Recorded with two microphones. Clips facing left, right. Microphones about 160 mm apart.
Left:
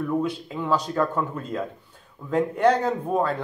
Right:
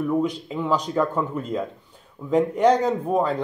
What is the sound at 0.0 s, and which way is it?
Speech, 15° right (ahead or behind).